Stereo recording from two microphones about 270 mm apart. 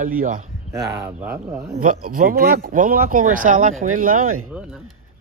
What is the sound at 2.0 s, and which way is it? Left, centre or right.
Speech, right.